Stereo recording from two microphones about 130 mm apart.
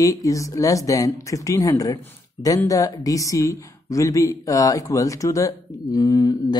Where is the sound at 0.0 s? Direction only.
25° left (ahead or behind).